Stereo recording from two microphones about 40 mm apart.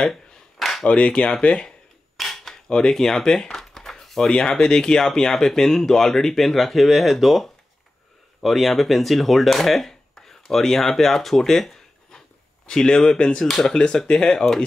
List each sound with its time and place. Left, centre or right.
0.8 s speech: left
2.1 s a sound: centre
4.3 s speech: centre